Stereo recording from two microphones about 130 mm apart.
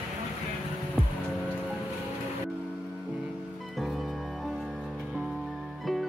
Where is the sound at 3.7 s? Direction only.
Centre (ahead or behind).